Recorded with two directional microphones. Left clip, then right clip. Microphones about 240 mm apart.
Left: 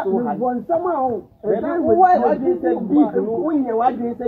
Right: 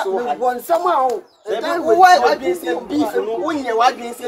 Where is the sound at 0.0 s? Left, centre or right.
Right.